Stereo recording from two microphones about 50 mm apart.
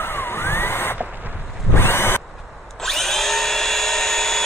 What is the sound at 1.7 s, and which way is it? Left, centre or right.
Drill, left.